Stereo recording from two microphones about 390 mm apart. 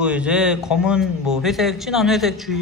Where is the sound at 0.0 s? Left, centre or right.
Centre.